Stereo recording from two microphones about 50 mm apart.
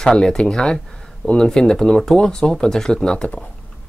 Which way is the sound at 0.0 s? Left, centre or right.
Centre.